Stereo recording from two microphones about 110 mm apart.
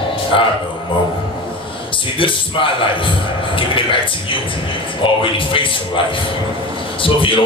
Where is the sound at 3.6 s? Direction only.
50° left (ahead or behind).